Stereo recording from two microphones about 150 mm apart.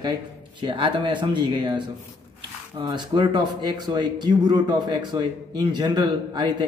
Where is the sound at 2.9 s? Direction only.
30° right (ahead or behind).